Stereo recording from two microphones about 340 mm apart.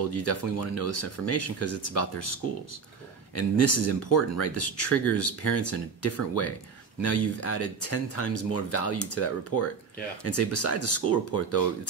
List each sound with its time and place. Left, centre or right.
0.1 s speech: left
3.3 s speech: left